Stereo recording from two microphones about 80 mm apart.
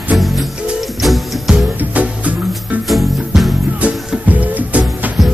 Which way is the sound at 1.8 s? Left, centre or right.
Centre.